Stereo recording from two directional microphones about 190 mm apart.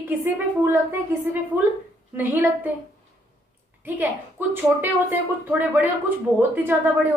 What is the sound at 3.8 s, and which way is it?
Speech, 10° right (ahead or behind).